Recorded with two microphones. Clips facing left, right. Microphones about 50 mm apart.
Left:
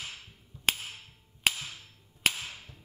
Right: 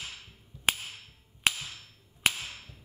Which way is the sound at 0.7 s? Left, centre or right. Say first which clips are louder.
Right 1 dB; centre.